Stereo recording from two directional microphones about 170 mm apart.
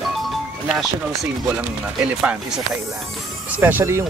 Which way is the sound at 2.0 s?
5° right (ahead or behind).